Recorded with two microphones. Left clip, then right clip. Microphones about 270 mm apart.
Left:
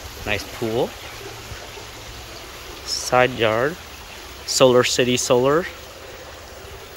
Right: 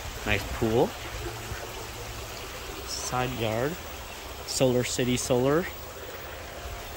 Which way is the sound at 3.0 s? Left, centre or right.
Centre.